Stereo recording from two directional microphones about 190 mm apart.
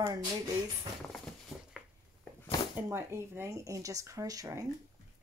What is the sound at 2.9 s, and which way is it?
Speech, 15° right (ahead or behind).